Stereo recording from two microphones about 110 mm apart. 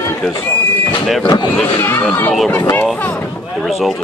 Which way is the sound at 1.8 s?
20° left (ahead or behind).